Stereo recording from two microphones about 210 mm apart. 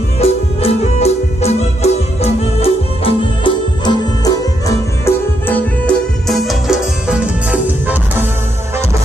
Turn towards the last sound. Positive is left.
turn(degrees=-5)  # may be behind; listen again after turning